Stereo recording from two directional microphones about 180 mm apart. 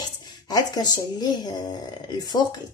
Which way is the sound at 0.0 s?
20° left (ahead or behind).